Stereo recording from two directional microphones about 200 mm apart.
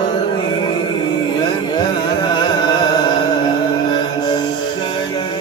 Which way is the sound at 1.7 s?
25° left (ahead or behind).